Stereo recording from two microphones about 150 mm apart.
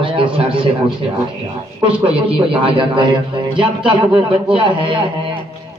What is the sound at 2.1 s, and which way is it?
A man's voice, 35° right (ahead or behind).